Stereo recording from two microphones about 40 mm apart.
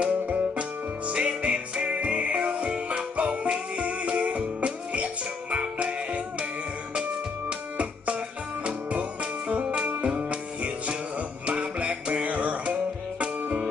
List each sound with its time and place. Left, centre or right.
0.0 s music: right
2.7 s music: right
3.2 s music: right
6.9 s music: right